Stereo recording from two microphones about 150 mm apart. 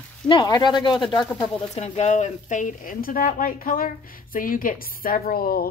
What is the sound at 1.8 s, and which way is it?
A woman's voice, 50° left (ahead or behind).